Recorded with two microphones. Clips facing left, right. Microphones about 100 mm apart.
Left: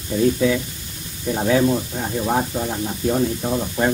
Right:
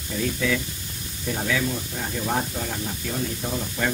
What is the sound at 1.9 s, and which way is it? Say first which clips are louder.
Speech: left 5 dB; 25° left (ahead or behind).